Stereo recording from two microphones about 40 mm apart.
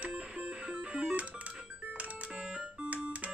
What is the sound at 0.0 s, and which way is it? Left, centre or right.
Music, right.